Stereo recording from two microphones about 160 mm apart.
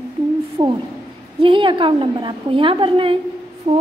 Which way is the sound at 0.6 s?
30° right (ahead or behind).